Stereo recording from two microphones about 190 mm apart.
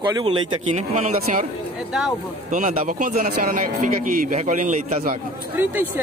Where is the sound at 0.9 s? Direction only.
40° right (ahead or behind).